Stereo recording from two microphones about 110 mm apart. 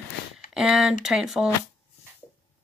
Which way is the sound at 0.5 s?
5° right (ahead or behind).